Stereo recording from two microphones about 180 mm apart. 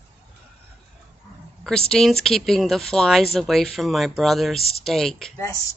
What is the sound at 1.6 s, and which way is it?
Speech, 5° left (ahead or behind).